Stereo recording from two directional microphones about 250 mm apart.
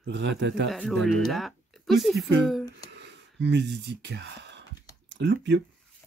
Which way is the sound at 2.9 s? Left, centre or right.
Right.